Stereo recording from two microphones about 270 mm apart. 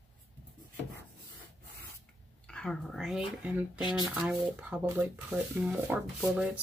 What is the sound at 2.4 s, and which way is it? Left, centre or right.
Speech, centre.